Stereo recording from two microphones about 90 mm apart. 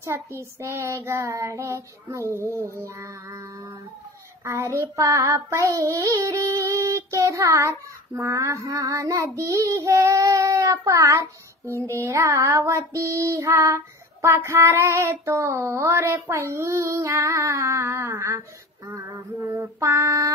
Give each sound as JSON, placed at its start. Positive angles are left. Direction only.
{"t": 0.0, "sound": "child singing", "side_deg": -30}
{"t": 4.5, "sound": "child singing", "side_deg": -30}
{"t": 8.1, "sound": "child singing", "side_deg": -20}
{"t": 8.4, "sound": "child singing", "side_deg": -35}
{"t": 19.5, "sound": "child singing", "side_deg": -35}